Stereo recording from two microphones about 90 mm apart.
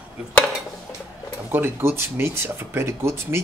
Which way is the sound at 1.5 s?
25° right (ahead or behind).